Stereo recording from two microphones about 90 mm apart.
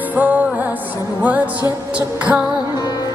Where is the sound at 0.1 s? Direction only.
15° right (ahead or behind).